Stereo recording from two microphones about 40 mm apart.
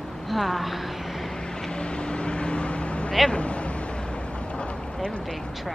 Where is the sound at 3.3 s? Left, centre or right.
Left.